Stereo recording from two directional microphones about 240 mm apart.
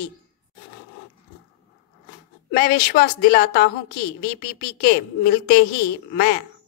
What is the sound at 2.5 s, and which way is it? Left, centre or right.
A woman's voice, left.